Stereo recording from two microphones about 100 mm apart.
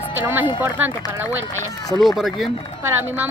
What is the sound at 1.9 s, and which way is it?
Speech, centre (ahead or behind).